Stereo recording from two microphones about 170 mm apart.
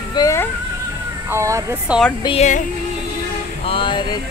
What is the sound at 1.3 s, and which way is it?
Speech, 20° right (ahead or behind).